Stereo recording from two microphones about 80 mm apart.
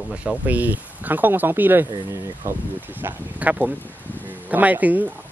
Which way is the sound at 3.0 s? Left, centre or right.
Right.